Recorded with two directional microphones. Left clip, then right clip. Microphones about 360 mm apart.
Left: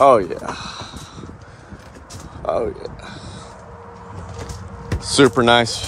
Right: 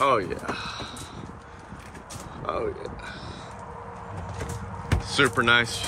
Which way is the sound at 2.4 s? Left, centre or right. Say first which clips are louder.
Left 8 dB; centre.